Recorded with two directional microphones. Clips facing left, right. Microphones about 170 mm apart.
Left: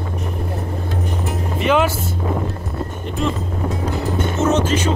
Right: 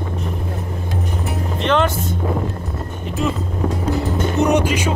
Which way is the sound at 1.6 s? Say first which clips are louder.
Left 1 dB; 5° left (ahead or behind).